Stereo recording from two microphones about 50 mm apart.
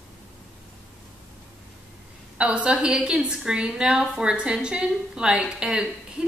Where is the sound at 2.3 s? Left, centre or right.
Right.